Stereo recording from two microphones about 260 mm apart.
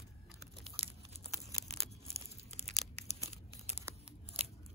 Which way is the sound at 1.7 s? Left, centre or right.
Right.